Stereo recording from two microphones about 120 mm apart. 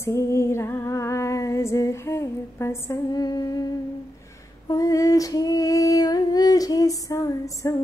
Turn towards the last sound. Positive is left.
turn(degrees=30)  # may be behind; listen again after turning